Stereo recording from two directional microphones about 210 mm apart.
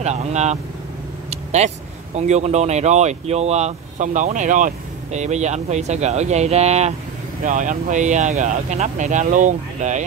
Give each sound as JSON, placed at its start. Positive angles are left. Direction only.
{"t": 0.0, "sound": "speech", "side_deg": -35}
{"t": 1.3, "sound": "vehicle", "side_deg": -35}
{"t": 2.1, "sound": "speech", "side_deg": -30}